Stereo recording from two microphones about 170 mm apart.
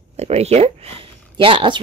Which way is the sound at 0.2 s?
40° right (ahead or behind).